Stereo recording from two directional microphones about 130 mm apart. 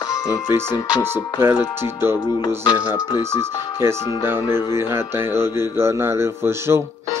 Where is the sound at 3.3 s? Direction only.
20° right (ahead or behind).